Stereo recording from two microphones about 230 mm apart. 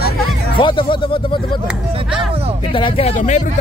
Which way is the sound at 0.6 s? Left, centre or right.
Left.